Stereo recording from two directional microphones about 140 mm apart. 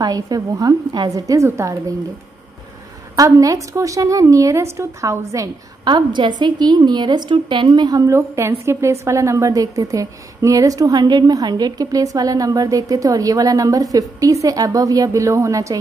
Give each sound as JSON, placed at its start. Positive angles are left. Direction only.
{"t": 0.0, "sound": "a woman's voice", "side_deg": -25}
{"t": 3.2, "sound": "a woman's voice", "side_deg": -25}
{"t": 8.1, "sound": "a woman's voice", "side_deg": -20}